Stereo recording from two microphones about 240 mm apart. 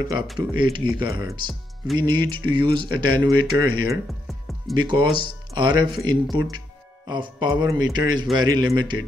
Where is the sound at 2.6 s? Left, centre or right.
Right.